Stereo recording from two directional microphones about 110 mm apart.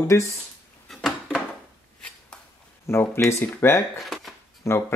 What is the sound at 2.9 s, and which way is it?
Speech, 25° left (ahead or behind).